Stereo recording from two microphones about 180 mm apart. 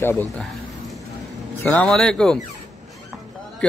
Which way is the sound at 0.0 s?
10° left (ahead or behind).